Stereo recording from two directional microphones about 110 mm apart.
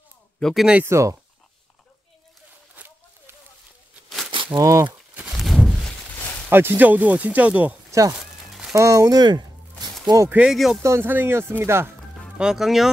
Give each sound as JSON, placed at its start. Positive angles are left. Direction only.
{"t": 0.4, "sound": "speech", "side_deg": 5}
{"t": 0.8, "sound": "speech", "side_deg": -25}
{"t": 2.7, "sound": "a sound", "side_deg": -15}
{"t": 4.6, "sound": "speech", "side_deg": -30}
{"t": 5.3, "sound": "a sound", "side_deg": 0}
{"t": 6.5, "sound": "speech", "side_deg": -20}
{"t": 7.9, "sound": "speech", "side_deg": -30}
{"t": 8.5, "sound": "a sound", "side_deg": -5}
{"t": 8.7, "sound": "speech", "side_deg": -30}
{"t": 10.3, "sound": "speech", "side_deg": -5}
{"t": 10.8, "sound": "speech", "side_deg": -25}
{"t": 12.4, "sound": "speech", "side_deg": -5}